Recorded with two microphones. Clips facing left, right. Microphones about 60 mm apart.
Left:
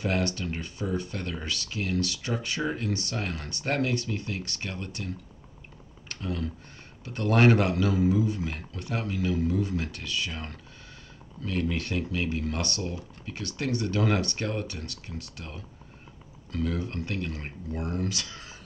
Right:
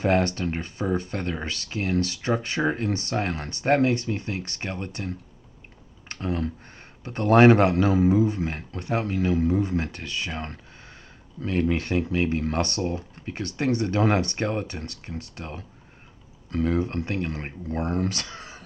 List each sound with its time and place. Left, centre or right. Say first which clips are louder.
0.0 s speech: right 6 dB; right